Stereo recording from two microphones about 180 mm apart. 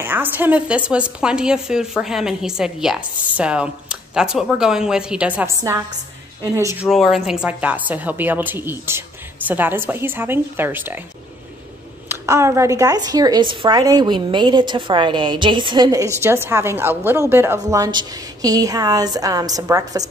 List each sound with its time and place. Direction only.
0.0 s a woman's voice: 10° right (ahead or behind)
6.9 s a woman's voice: centre (ahead or behind)
12.1 s a woman's voice: 15° right (ahead or behind)